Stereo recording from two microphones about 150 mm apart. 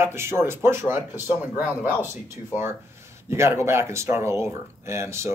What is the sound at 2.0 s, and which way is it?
Speech, 15° right (ahead or behind).